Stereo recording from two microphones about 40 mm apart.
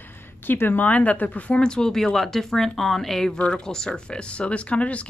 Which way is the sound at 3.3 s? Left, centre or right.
Left.